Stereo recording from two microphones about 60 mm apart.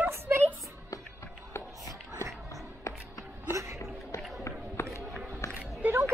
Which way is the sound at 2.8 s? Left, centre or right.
Left.